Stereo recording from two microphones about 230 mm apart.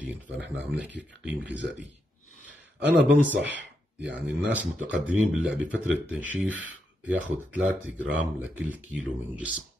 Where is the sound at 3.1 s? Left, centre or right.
Centre.